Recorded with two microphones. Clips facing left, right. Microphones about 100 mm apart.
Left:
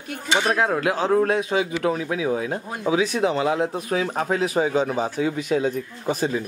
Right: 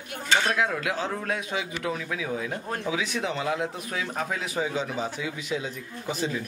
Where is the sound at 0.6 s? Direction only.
40° left (ahead or behind).